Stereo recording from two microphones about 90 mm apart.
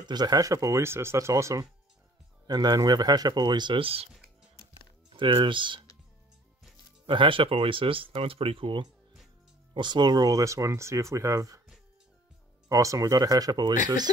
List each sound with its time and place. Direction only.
0.0 s speech: 50° right (ahead or behind)
2.4 s speech: 50° right (ahead or behind); by 4.1 s 90° right
4.1 s music: 5° right (ahead or behind)
5.1 s speech: 65° right (ahead or behind)
7.1 s speech: 70° right (ahead or behind)
9.8 s speech: 55° right (ahead or behind); by 11.6 s 35° right (ahead or behind)
12.6 s speech: 40° right (ahead or behind)